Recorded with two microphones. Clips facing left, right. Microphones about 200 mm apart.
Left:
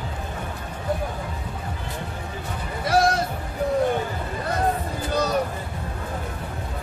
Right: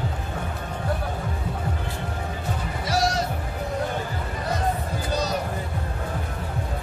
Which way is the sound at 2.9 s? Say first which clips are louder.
Left 4 dB; 55° left (ahead or behind).